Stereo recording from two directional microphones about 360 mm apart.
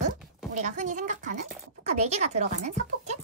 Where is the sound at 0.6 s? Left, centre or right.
Centre.